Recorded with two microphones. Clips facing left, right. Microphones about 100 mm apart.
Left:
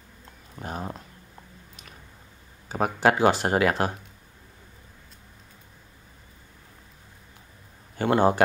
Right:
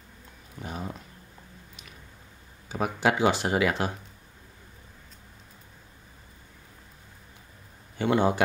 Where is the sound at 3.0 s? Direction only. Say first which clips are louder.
Left 3 dB; 45° left (ahead or behind).